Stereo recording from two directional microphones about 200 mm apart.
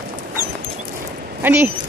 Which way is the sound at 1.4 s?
10° right (ahead or behind).